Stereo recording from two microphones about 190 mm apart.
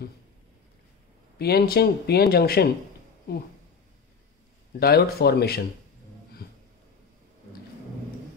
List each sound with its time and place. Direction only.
1.4 s speech: 55° left (ahead or behind)
4.7 s speech: 55° left (ahead or behind)
6.4 s a sound: 55° left (ahead or behind)